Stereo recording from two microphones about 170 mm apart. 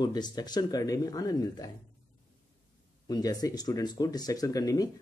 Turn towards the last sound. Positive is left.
turn(degrees=20)  # may be behind; listen again after turning